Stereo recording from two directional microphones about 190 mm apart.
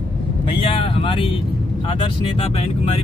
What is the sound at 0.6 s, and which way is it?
Speech, 30° left (ahead or behind).